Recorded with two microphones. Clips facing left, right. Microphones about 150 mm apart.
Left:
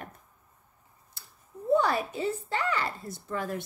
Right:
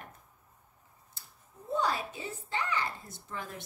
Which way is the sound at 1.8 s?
60° left (ahead or behind).